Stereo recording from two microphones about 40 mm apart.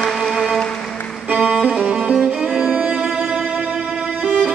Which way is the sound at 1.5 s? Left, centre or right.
Centre.